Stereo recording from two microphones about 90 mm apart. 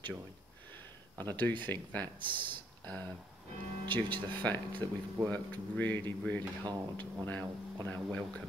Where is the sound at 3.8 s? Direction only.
60° right (ahead or behind).